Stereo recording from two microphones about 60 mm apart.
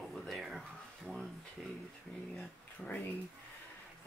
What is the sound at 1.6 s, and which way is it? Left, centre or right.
Speech, centre.